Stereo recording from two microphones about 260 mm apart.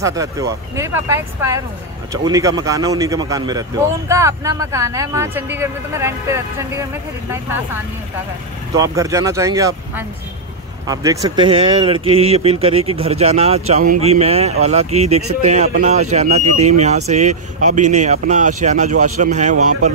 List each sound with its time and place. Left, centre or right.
0.0 s speech: centre
8.7 s speech: centre; by 19.5 s right
19.5 s speech: right